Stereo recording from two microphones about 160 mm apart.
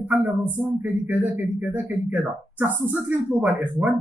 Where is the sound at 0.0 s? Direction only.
10° right (ahead or behind).